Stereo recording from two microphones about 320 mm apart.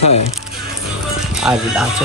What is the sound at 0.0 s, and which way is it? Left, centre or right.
Speech, left.